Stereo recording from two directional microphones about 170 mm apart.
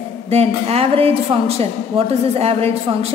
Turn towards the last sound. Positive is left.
turn(degrees=-35)  # may be behind; listen again after turning